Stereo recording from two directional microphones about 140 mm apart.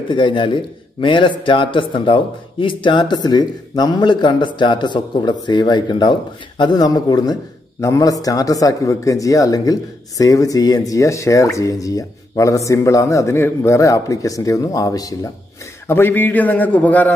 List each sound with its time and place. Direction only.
0.1 s a man's voice: 35° left (ahead or behind)
15.9 s a man's voice: 15° left (ahead or behind)